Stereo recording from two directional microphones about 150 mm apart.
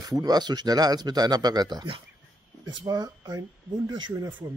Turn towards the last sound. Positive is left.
turn(degrees=-30)  # may be behind; listen again after turning